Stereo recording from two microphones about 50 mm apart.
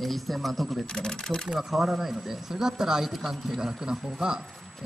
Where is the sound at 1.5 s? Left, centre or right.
Centre.